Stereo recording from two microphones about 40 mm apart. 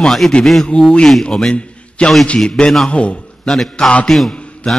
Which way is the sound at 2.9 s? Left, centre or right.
Left.